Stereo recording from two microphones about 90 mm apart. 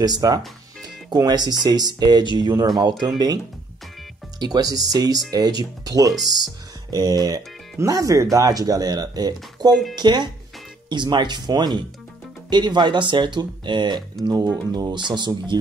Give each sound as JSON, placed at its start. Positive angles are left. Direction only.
{"t": 0.0, "sound": "speech", "side_deg": -45}
{"t": 4.4, "sound": "speech", "side_deg": -45}